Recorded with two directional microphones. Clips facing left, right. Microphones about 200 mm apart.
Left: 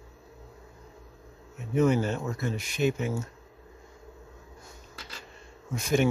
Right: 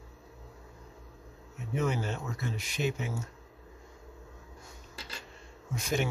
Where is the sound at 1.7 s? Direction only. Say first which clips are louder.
Left 8 dB; 45° left (ahead or behind).